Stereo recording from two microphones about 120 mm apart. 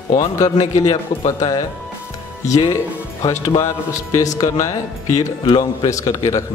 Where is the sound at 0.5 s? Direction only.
70° left (ahead or behind).